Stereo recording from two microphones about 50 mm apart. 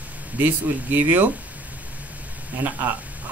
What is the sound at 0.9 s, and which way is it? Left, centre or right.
Speech, right.